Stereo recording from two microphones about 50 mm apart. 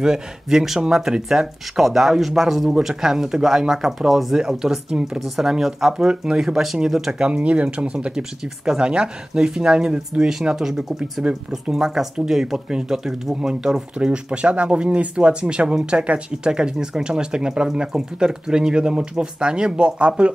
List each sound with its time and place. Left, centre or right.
0.0 s speech: centre
5.2 s speech: centre
6.0 s speech: centre
7.2 s speech: right